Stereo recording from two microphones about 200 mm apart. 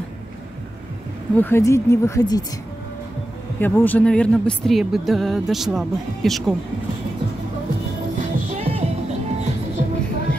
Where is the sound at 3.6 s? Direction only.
10° left (ahead or behind).